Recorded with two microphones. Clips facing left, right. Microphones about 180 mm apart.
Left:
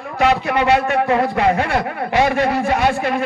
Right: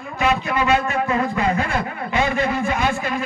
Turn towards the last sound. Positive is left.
turn(degrees=65)  # may be behind; listen again after turning